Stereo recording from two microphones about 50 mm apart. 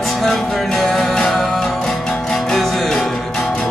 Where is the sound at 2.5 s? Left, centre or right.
Centre.